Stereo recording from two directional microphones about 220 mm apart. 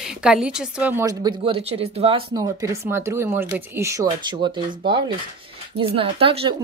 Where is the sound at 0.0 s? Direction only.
5° right (ahead or behind); by 6.5 s 25° right (ahead or behind).